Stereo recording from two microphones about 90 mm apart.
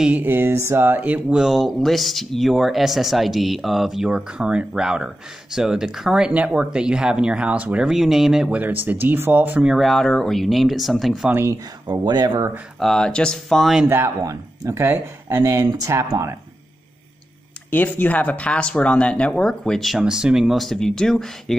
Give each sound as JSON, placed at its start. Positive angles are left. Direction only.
{"t": 0.2, "sound": "speech", "side_deg": -25}
{"t": 1.3, "sound": "speech", "side_deg": -5}
{"t": 8.5, "sound": "speech", "side_deg": -20}
{"t": 9.7, "sound": "speech", "side_deg": 0}
{"t": 11.3, "sound": "speech", "side_deg": -30}
{"t": 11.9, "sound": "speech", "side_deg": -50}
{"t": 12.7, "sound": "speech", "side_deg": 5}
{"t": 13.8, "sound": "speech", "side_deg": -25}
{"t": 14.2, "sound": "speech", "side_deg": -35}
{"t": 17.6, "sound": "speech", "side_deg": 20}